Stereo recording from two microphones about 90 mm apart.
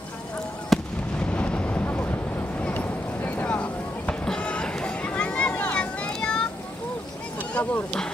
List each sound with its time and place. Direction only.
0.7 s fireworks: centre (ahead or behind)
1.2 s a sound: 15° left (ahead or behind)
7.5 s speech: 15° left (ahead or behind)